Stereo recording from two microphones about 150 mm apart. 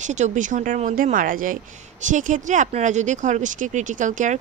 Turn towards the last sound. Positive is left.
turn(degrees=-60)  # may be behind; listen again after turning